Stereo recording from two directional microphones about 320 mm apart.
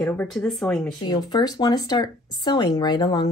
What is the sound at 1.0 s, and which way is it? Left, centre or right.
Speech, centre.